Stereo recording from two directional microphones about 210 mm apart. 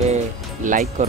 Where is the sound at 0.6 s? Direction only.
35° right (ahead or behind).